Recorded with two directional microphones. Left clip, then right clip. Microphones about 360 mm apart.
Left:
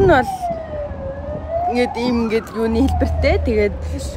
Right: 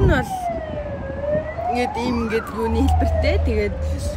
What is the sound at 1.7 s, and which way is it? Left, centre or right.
Speech, centre.